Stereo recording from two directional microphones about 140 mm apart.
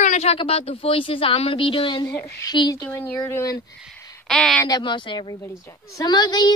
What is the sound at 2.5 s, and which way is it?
Speech, 30° left (ahead or behind).